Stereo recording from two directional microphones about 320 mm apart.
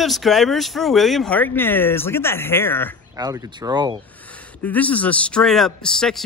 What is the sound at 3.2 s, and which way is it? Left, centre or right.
Speech, centre.